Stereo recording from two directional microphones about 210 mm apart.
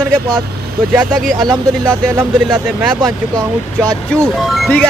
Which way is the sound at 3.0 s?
15° right (ahead or behind).